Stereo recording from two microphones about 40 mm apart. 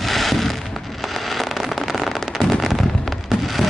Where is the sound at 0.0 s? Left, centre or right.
Centre.